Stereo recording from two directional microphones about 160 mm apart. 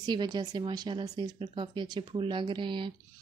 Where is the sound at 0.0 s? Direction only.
25° right (ahead or behind).